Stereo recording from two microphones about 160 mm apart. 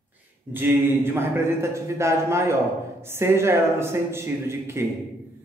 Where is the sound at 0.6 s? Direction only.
15° right (ahead or behind).